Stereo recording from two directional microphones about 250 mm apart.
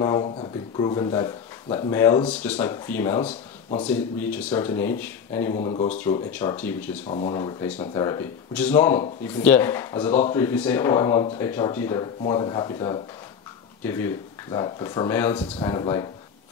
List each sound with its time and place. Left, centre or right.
0.0 s speech: centre
5.5 s speech: left
6.3 s speech: centre
7.1 s speech: left